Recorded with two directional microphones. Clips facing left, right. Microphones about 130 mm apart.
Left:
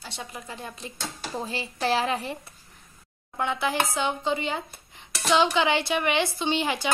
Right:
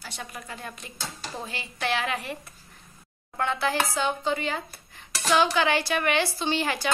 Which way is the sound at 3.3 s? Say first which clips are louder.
Even; 15° left (ahead or behind).